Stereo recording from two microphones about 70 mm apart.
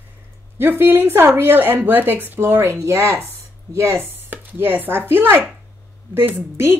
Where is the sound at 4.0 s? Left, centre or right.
Right.